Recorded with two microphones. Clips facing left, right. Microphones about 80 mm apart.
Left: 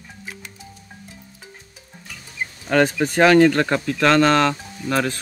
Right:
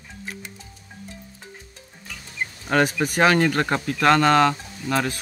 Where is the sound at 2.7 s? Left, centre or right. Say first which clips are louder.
Left 3 dB; centre.